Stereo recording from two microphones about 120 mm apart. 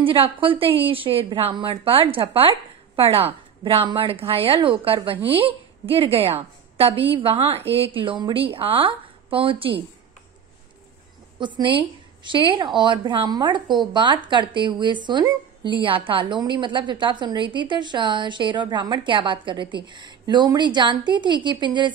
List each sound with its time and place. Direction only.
0.0 s a woman's voice: 50° right (ahead or behind)
11.3 s a woman's voice: 40° right (ahead or behind)